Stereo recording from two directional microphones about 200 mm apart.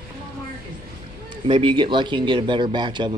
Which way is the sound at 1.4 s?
25° right (ahead or behind).